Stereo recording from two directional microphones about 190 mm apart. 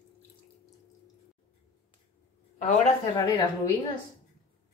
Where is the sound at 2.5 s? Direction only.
35° left (ahead or behind).